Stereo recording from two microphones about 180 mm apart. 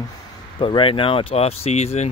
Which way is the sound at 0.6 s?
30° left (ahead or behind).